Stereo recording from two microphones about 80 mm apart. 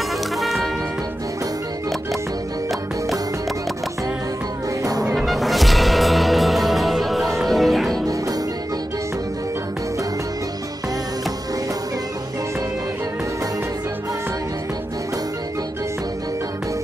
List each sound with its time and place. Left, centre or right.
0.4 s music: centre
5.0 s music: centre